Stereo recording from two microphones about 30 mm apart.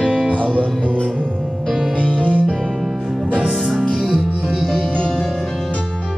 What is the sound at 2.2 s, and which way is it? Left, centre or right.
Music, right.